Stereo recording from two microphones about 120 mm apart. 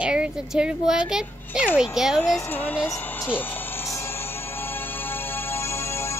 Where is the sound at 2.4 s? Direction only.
15° left (ahead or behind).